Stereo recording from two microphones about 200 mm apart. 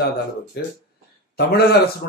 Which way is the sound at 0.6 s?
55° left (ahead or behind).